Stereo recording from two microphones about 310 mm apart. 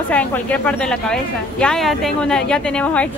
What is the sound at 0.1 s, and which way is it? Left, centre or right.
Speech, centre.